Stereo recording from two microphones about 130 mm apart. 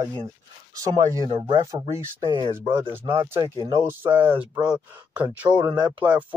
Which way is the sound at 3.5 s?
30° right (ahead or behind).